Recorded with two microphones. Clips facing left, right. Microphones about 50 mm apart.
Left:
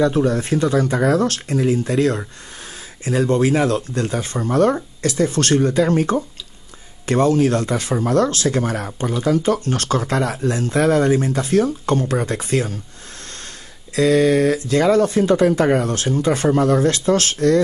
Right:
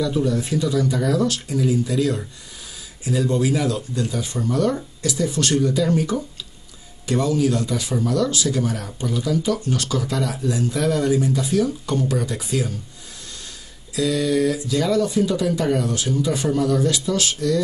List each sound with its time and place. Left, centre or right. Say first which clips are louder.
0.0 s speech: left 4 dB; left
13.9 s speech: left 6 dB; left